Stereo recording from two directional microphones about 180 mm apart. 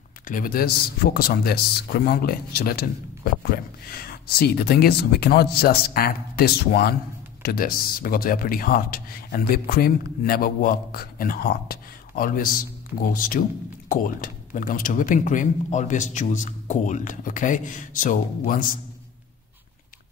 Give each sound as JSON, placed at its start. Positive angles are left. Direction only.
{"t": 0.3, "sound": "speech", "side_deg": 50}